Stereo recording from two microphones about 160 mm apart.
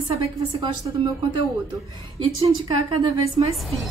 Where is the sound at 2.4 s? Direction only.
30° right (ahead or behind).